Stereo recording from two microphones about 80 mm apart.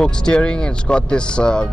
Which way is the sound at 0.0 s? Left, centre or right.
Centre.